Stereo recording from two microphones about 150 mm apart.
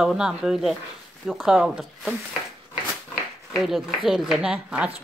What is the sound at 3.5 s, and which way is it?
Speech, centre (ahead or behind).